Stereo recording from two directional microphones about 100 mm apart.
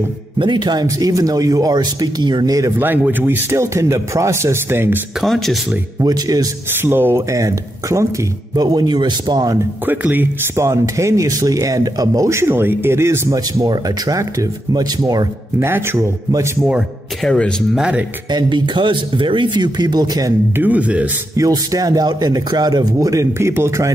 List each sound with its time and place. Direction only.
0.4 s speech: 50° right (ahead or behind)
2.8 s speech: 20° right (ahead or behind)
5.2 s speech: centre (ahead or behind)
5.9 s speech: 40° right (ahead or behind)
6.8 s speech: 20° right (ahead or behind); by 9.6 s 45° right (ahead or behind)
9.8 s speech: 20° right (ahead or behind); by 15.2 s 40° right (ahead or behind)
15.6 s speech: 25° right (ahead or behind)
17.2 s speech: 10° left (ahead or behind)
17.7 s speech: 10° right (ahead or behind)
18.3 s speech: 50° right (ahead or behind)
20.5 s speech: 15° right (ahead or behind)
21.4 s speech: 40° right (ahead or behind)